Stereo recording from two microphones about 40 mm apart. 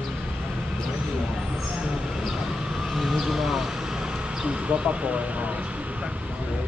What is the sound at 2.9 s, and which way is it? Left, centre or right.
Vehicle, centre.